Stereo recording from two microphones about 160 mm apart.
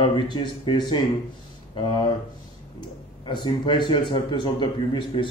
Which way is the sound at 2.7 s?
30° left (ahead or behind).